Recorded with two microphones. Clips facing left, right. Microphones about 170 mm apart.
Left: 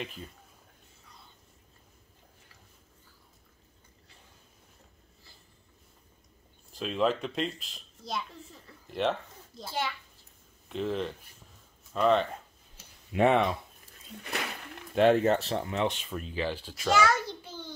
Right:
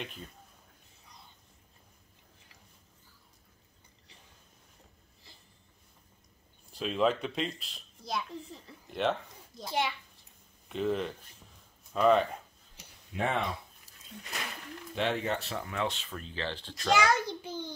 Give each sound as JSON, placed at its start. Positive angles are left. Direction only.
{"t": 0.0, "sound": "a child's voice", "side_deg": 0}
{"t": 6.7, "sound": "a child's voice", "side_deg": 0}
{"t": 13.1, "sound": "speech", "side_deg": 70}
{"t": 15.0, "sound": "speech", "side_deg": 45}
{"t": 16.9, "sound": "a sound", "side_deg": -15}